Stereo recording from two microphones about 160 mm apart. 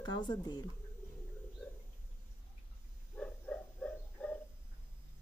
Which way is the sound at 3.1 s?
5° left (ahead or behind).